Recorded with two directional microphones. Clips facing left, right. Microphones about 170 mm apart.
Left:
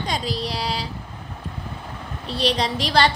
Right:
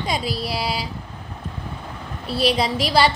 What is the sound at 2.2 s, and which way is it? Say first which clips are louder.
Speech: right 2 dB; 10° right (ahead or behind).